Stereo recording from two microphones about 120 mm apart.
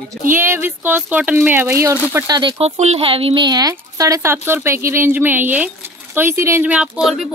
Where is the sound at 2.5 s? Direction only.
65° right (ahead or behind); by 6.7 s 20° right (ahead or behind).